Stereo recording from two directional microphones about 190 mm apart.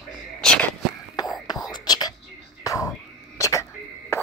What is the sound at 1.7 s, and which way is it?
Whispering, 20° left (ahead or behind).